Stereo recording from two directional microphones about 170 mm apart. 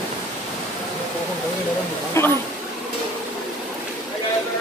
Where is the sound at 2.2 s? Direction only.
15° left (ahead or behind).